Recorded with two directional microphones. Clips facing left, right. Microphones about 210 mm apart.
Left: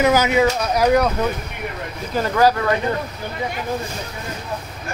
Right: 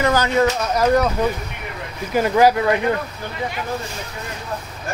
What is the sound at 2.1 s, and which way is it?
Speech, 15° right (ahead or behind).